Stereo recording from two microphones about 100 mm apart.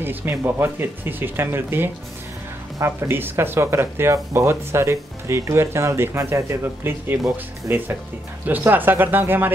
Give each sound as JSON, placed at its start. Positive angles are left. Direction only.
{"t": 0.0, "sound": "speech", "side_deg": -20}